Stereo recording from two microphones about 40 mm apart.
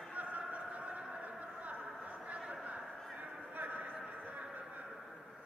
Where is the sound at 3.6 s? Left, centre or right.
Right.